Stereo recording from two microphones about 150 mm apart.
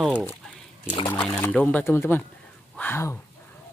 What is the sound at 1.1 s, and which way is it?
Speech, 10° left (ahead or behind).